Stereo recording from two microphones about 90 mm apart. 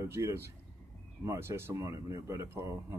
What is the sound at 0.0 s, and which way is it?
Speech, 30° right (ahead or behind).